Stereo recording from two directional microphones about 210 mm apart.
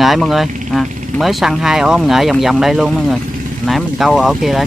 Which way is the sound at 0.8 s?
35° right (ahead or behind).